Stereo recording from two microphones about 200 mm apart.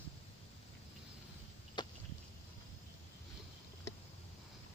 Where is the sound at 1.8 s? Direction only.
20° left (ahead or behind).